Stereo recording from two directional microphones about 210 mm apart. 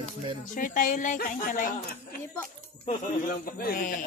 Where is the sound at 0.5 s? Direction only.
40° left (ahead or behind).